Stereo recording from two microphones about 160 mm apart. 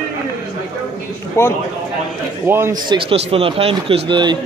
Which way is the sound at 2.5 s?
15° right (ahead or behind).